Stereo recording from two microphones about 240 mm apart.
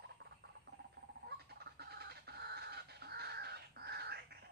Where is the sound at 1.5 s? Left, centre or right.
Right.